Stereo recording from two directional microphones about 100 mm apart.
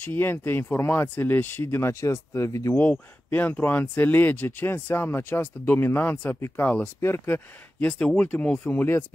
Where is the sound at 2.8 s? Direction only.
20° left (ahead or behind).